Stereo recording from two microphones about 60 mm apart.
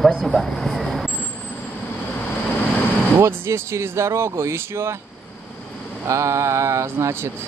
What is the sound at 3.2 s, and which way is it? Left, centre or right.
Speech, right.